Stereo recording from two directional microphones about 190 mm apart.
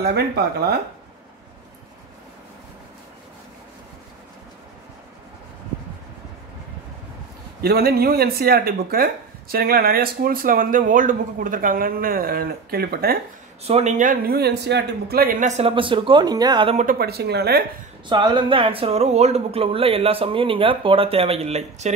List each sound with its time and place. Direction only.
0.0 s speech: 55° right (ahead or behind)
7.6 s speech: 55° right (ahead or behind)
13.7 s speech: 35° right (ahead or behind); by 15.3 s 55° right (ahead or behind)
15.4 s speech: 30° right (ahead or behind)
16.7 s speech: 50° right (ahead or behind)
18.0 s speech: 25° right (ahead or behind)